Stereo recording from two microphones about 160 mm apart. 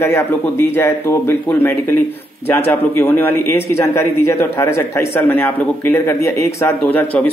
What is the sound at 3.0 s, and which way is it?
A man's voice, 15° left (ahead or behind).